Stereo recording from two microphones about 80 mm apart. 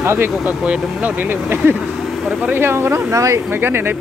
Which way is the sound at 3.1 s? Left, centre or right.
Right.